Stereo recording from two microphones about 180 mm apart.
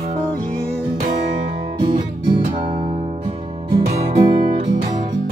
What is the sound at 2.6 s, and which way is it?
Music, 30° right (ahead or behind).